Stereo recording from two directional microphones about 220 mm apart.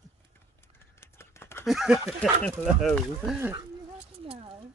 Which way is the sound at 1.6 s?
Centre (ahead or behind).